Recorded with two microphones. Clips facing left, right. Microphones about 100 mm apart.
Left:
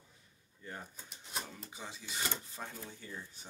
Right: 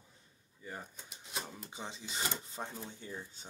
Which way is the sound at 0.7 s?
5° right (ahead or behind).